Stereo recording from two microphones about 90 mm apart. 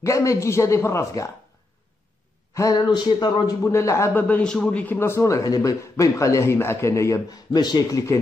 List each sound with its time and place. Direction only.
0.0 s a man's voice: 35° left (ahead or behind)
2.5 s speech: 40° left (ahead or behind)
2.9 s speech: 55° left (ahead or behind)
3.6 s a man's voice: 35° left (ahead or behind)
4.1 s a man's voice: 20° left (ahead or behind)
4.6 s a man's voice: 20° left (ahead or behind); by 8.0 s 50° left (ahead or behind)